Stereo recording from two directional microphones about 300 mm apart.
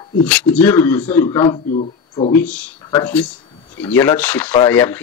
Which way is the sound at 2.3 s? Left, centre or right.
Centre.